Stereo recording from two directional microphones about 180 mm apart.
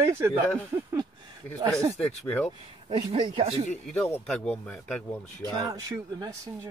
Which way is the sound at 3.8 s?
5° left (ahead or behind).